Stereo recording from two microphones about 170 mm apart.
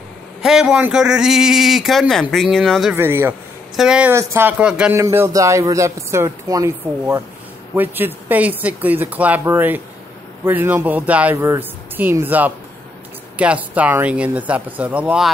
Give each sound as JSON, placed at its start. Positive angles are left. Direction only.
{"t": 0.4, "sound": "a man's voice", "side_deg": 0}
{"t": 3.0, "sound": "a man's voice", "side_deg": -15}
{"t": 4.1, "sound": "speech", "side_deg": -15}